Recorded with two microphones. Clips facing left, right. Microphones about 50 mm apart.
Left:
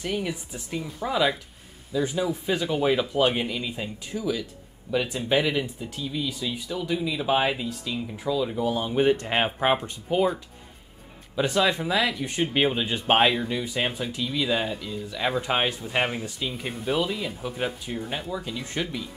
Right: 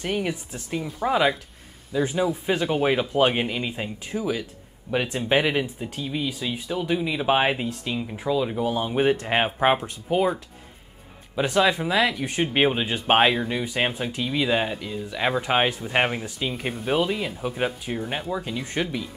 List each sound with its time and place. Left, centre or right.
0.0 s speech: right
0.8 s speech: centre
1.9 s speech: right
8.1 s speech: right